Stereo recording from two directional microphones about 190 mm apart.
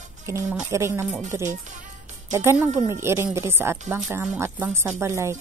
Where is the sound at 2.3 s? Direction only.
10° right (ahead or behind).